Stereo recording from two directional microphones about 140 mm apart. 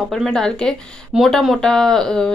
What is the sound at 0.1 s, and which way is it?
Speech, centre (ahead or behind).